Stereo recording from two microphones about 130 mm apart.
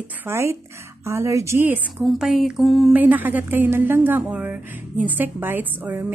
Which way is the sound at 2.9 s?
15° right (ahead or behind).